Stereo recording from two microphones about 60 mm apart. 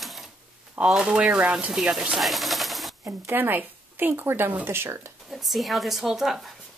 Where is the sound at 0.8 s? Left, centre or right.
Centre.